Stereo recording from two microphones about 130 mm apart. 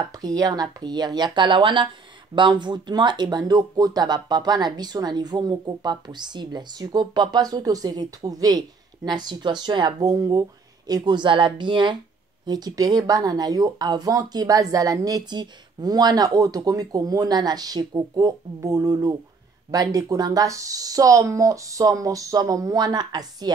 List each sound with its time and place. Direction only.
0.2 s speech: 30° right (ahead or behind)